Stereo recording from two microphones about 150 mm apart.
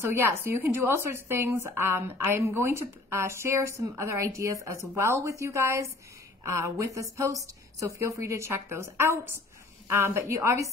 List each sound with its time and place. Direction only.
0.0 s a woman's voice: 15° right (ahead or behind)